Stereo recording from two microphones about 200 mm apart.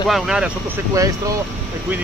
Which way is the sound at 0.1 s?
5° right (ahead or behind).